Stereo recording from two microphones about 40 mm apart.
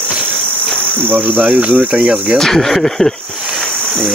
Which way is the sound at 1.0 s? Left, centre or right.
Right.